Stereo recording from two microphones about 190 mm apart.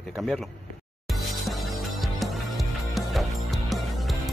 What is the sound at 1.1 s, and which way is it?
Music, centre (ahead or behind).